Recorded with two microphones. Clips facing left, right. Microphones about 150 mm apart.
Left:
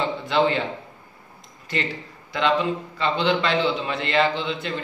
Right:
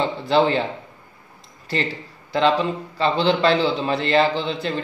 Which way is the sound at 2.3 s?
35° right (ahead or behind).